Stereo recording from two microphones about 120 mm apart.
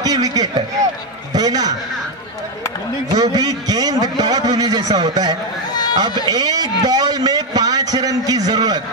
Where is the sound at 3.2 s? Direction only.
30° right (ahead or behind).